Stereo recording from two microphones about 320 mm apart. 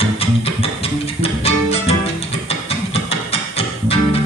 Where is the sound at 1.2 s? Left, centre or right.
Centre.